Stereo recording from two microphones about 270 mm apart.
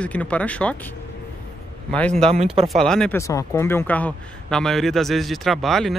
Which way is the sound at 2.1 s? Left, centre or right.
Right.